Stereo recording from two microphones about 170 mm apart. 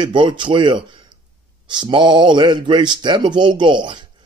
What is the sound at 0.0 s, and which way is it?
Speech, 30° right (ahead or behind).